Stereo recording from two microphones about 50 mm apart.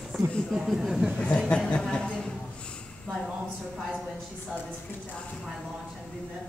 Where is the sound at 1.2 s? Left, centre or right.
Centre.